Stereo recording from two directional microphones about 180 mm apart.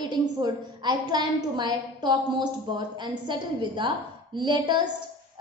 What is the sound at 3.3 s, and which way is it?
A woman's voice, 25° right (ahead or behind).